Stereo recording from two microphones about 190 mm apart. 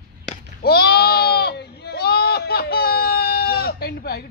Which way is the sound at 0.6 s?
55° left (ahead or behind).